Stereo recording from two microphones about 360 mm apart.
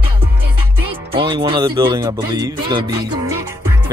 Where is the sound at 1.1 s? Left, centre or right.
Centre.